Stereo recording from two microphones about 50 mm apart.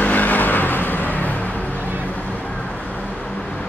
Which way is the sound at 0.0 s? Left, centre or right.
Left.